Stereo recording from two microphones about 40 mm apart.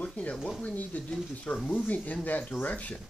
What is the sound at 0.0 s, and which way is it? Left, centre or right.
Speech, left.